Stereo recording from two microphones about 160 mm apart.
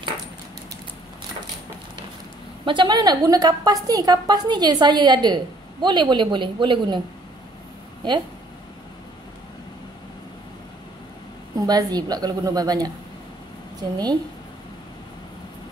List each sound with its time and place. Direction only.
2.6 s a woman's voice: 30° right (ahead or behind)
11.5 s a woman's voice: 25° right (ahead or behind)